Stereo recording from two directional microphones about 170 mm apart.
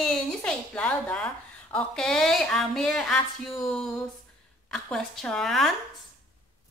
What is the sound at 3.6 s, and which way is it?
A woman's voice, centre (ahead or behind).